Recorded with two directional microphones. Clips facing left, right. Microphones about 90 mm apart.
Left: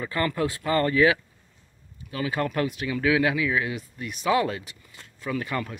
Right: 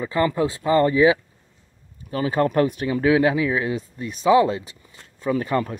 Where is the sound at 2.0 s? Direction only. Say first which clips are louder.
Right 6 dB; 35° right (ahead or behind).